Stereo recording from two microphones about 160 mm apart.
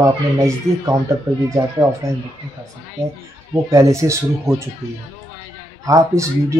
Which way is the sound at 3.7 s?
20° right (ahead or behind).